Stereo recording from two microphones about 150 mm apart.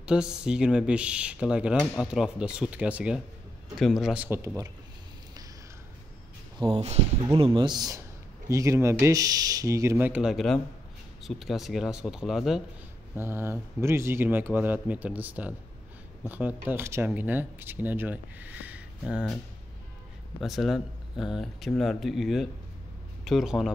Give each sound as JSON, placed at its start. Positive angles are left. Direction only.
{"t": 0.0, "sound": "speech", "side_deg": -5}
{"t": 6.6, "sound": "speech", "side_deg": -40}
{"t": 10.3, "sound": "speech", "side_deg": 5}
{"t": 13.1, "sound": "speech", "side_deg": -15}